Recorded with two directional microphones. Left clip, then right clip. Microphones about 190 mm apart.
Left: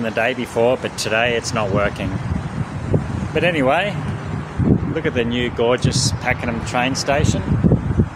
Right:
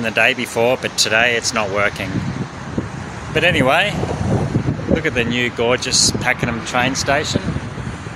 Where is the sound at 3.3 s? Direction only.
5° right (ahead or behind).